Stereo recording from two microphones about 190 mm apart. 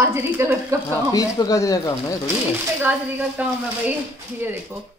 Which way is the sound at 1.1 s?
20° left (ahead or behind).